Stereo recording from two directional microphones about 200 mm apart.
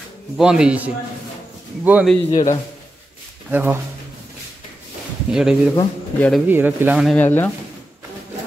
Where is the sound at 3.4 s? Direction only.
10° right (ahead or behind).